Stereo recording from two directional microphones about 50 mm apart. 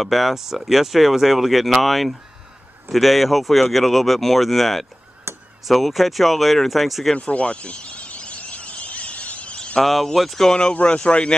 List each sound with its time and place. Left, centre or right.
0.0 s speech: centre
5.3 s a sound: right
5.7 s speech: centre
7.2 s a sound: left
9.8 s speech: centre
10.7 s speech: left